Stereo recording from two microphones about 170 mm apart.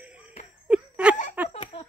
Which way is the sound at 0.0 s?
10° right (ahead or behind).